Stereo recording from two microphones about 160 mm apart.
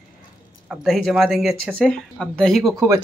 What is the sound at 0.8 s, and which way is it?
Speech, centre (ahead or behind).